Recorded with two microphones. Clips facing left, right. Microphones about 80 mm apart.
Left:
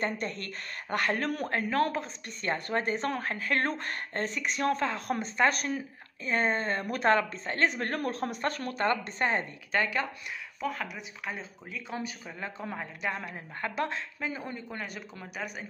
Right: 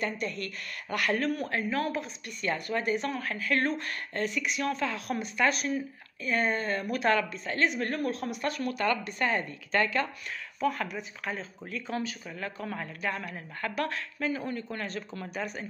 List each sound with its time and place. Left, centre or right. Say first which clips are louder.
0.0 s speech: even; left
6.2 s speech: even; left
9.7 s speech: right 2 dB; centre
10.6 s speech: right 5 dB; centre
12.0 s speech: right 2 dB; centre